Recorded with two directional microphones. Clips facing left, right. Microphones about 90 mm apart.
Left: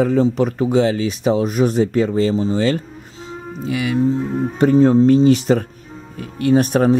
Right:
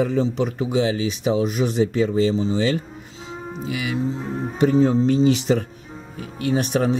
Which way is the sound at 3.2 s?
45° left (ahead or behind).